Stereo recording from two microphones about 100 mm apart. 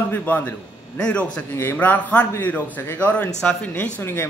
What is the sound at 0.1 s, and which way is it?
A man's voice, 20° left (ahead or behind).